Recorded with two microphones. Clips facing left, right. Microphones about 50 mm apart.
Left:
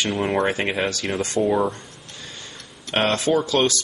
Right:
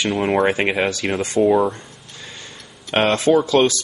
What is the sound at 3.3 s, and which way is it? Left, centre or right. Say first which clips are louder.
Speech: right 6 dB; centre.